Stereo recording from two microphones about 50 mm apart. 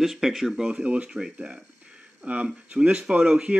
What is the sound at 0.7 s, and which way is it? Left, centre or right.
Speech, right.